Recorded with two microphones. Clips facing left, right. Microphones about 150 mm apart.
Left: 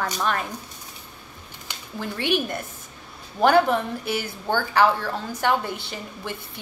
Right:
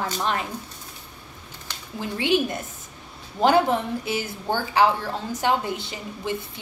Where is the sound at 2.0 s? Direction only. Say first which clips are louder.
Right 2 dB; 20° right (ahead or behind).